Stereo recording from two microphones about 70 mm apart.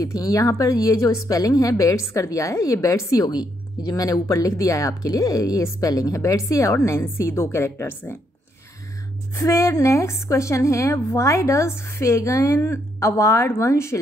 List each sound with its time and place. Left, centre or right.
0.0 s speech: left
3.3 s speech: left
9.3 s speech: left